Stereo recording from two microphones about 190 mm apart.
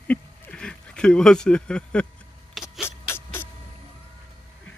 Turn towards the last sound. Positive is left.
turn(degrees=10)  # may be behind; listen again after turning